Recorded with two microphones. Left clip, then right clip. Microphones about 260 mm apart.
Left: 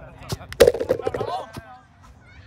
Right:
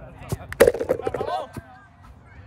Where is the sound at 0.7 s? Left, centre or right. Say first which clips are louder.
Left 1 dB; right.